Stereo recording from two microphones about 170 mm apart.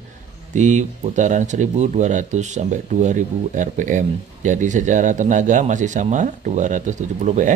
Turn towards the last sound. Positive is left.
turn(degrees=-45)  # may be behind; listen again after turning